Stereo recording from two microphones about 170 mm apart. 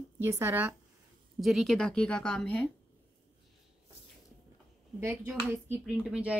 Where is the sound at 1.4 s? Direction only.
Centre (ahead or behind).